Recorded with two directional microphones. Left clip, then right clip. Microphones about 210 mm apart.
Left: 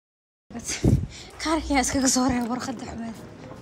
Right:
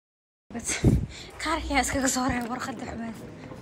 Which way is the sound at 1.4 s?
20° left (ahead or behind).